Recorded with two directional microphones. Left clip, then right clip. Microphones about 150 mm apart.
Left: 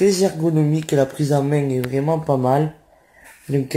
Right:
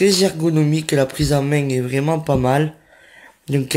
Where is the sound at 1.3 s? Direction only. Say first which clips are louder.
Even; 10° right (ahead or behind).